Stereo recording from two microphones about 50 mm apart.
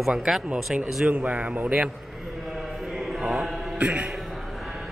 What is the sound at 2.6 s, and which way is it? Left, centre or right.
Chant, centre.